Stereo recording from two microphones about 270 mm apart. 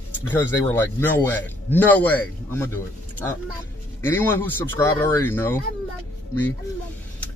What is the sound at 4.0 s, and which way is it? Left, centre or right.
Speech, centre.